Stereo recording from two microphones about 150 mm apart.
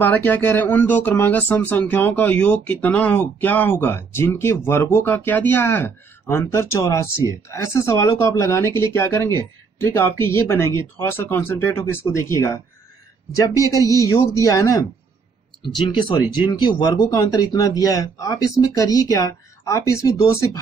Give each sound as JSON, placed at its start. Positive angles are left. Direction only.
{"t": 0.0, "sound": "speech", "side_deg": 10}